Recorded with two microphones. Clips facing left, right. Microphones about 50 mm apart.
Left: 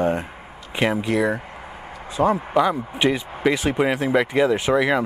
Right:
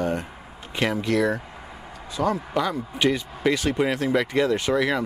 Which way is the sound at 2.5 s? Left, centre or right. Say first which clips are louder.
Left 6 dB; centre.